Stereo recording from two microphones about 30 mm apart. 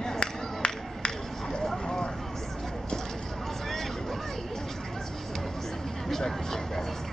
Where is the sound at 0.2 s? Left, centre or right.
Left.